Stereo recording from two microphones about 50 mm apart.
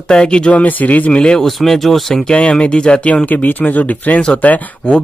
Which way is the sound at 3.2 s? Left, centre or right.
Left.